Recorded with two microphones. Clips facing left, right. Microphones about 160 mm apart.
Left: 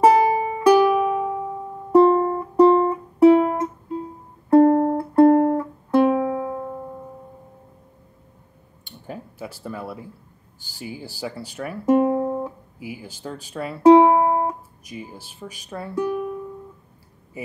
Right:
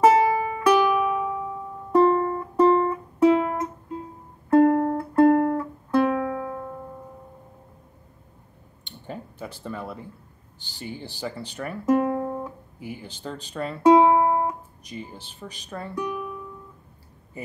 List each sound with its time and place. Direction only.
0.0 s music: 25° left (ahead or behind)
8.8 s a sound: 5° left (ahead or behind)
10.8 s speech: 10° left (ahead or behind)
11.9 s music: 25° left (ahead or behind)
12.7 s speech: 5° left (ahead or behind)
13.8 s music: 30° left (ahead or behind)
14.9 s speech: 10° left (ahead or behind)
15.9 s speech: 30° left (ahead or behind)